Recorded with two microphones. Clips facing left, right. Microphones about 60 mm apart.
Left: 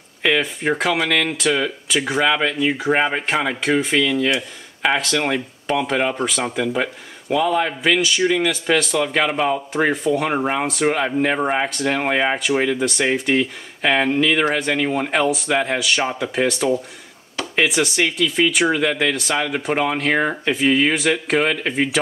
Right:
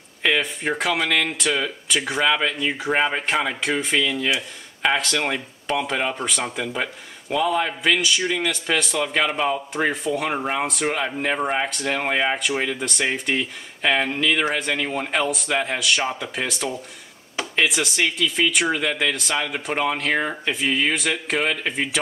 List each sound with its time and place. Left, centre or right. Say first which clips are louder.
0.2 s speech: left 3 dB; centre